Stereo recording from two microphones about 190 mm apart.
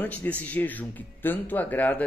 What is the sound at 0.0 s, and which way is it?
Speech, 10° left (ahead or behind).